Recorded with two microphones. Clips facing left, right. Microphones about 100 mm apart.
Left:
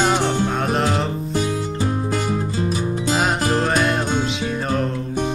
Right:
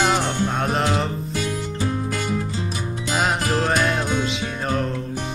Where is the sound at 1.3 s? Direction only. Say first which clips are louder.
Left 4 dB; 30° left (ahead or behind).